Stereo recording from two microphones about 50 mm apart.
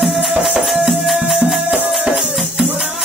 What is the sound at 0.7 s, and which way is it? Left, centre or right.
Music, centre.